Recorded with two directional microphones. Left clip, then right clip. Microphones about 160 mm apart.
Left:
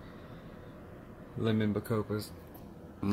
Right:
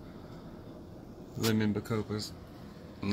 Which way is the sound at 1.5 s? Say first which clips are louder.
Even; 20° left (ahead or behind).